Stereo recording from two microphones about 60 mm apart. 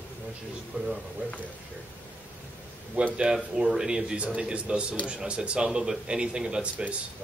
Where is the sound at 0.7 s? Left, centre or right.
Right.